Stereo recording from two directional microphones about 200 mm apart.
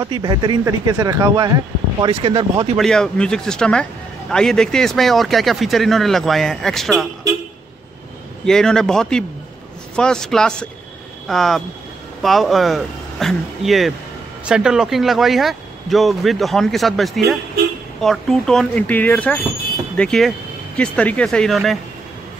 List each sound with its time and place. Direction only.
0.0 s speech: 20° right (ahead or behind)
2.8 s speech: 5° left (ahead or behind)
8.5 s speech: 5° left (ahead or behind)